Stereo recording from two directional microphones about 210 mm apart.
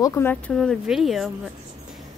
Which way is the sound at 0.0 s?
10° left (ahead or behind).